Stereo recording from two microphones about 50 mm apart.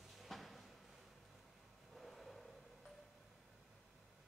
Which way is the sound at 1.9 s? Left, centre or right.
Centre.